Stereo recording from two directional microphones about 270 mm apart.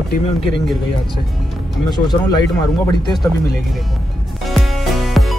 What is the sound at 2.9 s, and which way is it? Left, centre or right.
Speech, centre.